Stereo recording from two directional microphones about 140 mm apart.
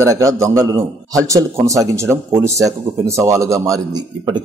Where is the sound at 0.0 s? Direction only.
25° right (ahead or behind).